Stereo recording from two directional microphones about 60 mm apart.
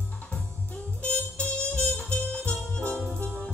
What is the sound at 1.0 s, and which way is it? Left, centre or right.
Music, left.